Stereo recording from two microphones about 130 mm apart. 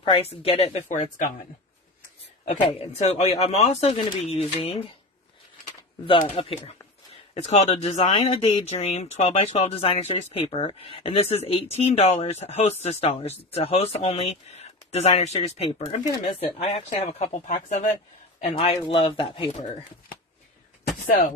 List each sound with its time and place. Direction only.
0.0 s speech: 50° left (ahead or behind)
0.8 s speech: 75° left (ahead or behind)
2.4 s speech: 60° left (ahead or behind)
6.0 s speech: 45° left (ahead or behind)
17.5 s speech: 70° left (ahead or behind)
18.4 s speech: 55° left (ahead or behind)
18.8 s speech: 40° left (ahead or behind)